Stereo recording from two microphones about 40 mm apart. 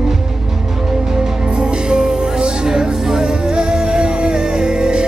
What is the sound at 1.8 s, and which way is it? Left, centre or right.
Music, centre.